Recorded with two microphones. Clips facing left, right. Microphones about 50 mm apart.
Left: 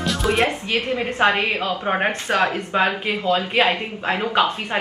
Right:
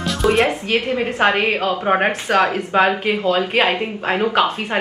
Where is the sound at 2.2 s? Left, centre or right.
Right.